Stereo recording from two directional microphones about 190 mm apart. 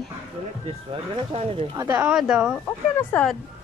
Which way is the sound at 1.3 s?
30° right (ahead or behind).